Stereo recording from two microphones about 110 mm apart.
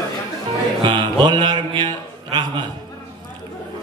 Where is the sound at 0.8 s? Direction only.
45° right (ahead or behind).